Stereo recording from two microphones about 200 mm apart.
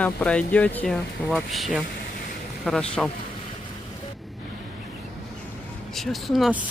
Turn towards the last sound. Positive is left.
turn(degrees=-5)  # may be behind; listen again after turning